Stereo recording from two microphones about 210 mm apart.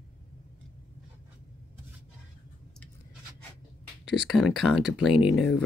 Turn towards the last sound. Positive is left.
turn(degrees=0)  # may be behind; listen again after turning